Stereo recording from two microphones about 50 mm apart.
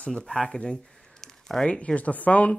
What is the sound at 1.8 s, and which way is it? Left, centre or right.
Speech, left.